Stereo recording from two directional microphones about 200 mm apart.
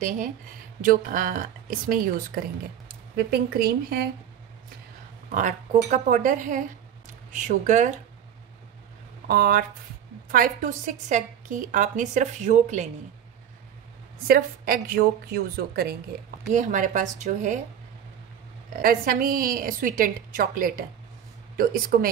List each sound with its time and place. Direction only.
0.8 s a woman's voice: 45° right (ahead or behind)
5.3 s a woman's voice: 40° right (ahead or behind)
9.3 s a woman's voice: 45° right (ahead or behind)
14.2 s a woman's voice: 45° right (ahead or behind)
18.8 s a woman's voice: 45° right (ahead or behind)